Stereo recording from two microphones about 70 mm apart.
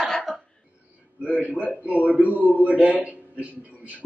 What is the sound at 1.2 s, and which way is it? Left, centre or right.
A man's voice, right.